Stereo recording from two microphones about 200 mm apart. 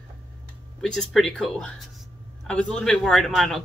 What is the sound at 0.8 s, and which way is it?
Speech, centre (ahead or behind).